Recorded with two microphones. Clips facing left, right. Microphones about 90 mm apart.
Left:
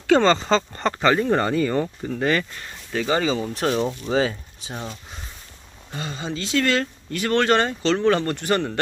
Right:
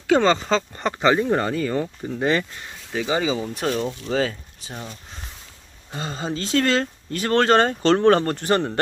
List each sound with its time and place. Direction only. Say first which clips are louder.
0.0 s speech: left 1 dB; 10° right (ahead or behind)
1.3 s speech: left 1 dB; centre (ahead or behind)
2.0 s speech: even; 20° right (ahead or behind)
3.4 s speech: left 1 dB; centre (ahead or behind)
3.7 s speech: left 2 dB; 15° left (ahead or behind)
5.9 s speech: right 2 dB; 35° right (ahead or behind)
8.3 s speech: right 1 dB; 30° right (ahead or behind)